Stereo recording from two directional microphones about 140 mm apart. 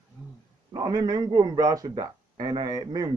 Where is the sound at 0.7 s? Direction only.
30° right (ahead or behind).